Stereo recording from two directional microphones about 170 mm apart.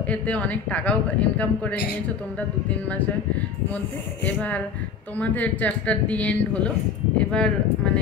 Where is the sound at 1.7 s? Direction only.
70° left (ahead or behind).